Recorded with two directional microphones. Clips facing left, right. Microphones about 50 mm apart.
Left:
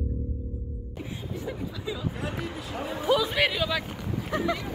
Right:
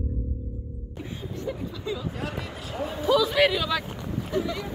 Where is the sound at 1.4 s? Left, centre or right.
Centre.